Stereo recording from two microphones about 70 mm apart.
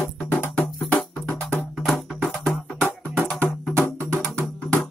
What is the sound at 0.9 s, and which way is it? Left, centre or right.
Music, centre.